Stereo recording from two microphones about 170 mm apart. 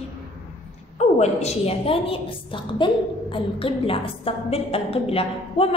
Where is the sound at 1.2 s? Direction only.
40° left (ahead or behind).